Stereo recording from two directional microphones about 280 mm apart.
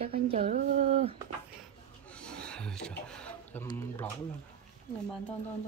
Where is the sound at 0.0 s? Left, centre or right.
Right.